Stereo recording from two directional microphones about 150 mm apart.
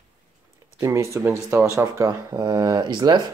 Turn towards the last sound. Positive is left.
turn(degrees=-25)  # may be behind; listen again after turning